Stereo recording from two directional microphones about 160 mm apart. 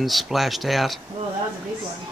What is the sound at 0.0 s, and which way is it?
Speech, centre (ahead or behind).